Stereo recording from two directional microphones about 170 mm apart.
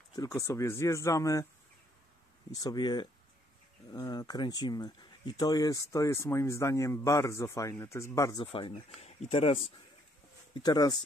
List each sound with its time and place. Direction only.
0.1 s speech: 20° left (ahead or behind)
2.5 s speech: 20° left (ahead or behind)
8.5 s speech: 30° left (ahead or behind)
10.5 s speech: 25° left (ahead or behind)